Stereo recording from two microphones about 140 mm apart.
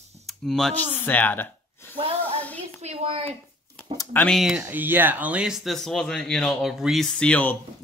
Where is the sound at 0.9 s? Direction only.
15° left (ahead or behind).